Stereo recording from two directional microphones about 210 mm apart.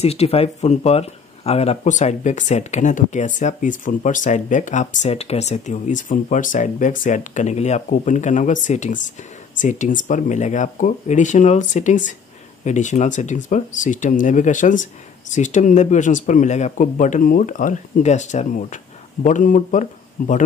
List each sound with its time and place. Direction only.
0.0 s speech: 30° left (ahead or behind)